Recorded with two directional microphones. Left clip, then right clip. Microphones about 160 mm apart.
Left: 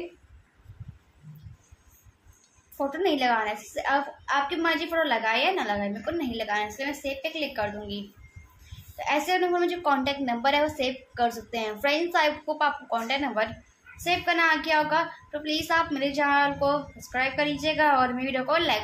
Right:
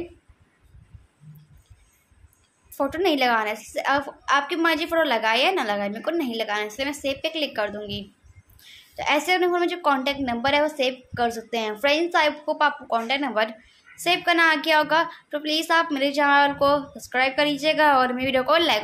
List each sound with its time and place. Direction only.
2.8 s a woman's voice: 40° right (ahead or behind)